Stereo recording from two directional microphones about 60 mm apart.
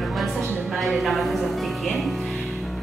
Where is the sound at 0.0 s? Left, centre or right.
Centre.